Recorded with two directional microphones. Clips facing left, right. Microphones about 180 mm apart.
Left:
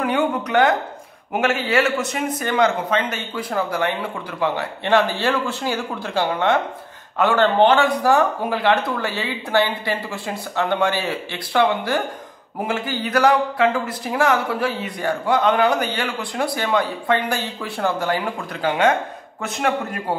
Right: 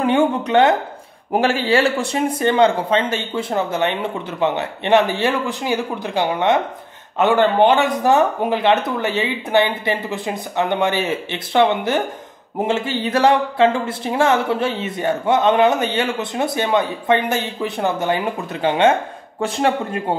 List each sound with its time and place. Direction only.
0.0 s speech: 25° right (ahead or behind)